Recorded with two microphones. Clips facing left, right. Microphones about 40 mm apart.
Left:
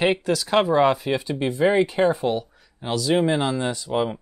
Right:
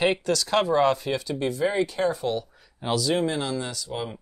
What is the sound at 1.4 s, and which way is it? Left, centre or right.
Speech, left.